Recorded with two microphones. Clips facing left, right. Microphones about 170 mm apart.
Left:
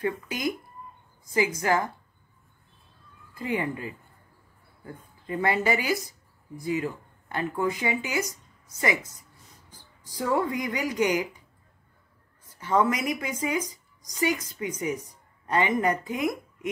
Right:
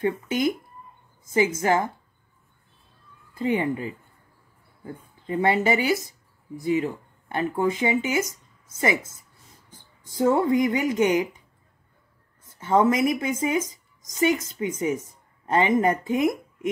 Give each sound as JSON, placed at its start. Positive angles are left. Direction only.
{"t": 0.0, "sound": "speech", "side_deg": -25}
{"t": 3.3, "sound": "speech", "side_deg": -25}
{"t": 12.4, "sound": "speech", "side_deg": -25}